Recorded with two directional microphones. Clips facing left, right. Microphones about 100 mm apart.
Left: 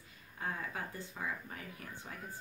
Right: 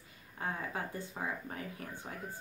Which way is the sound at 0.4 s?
30° right (ahead or behind).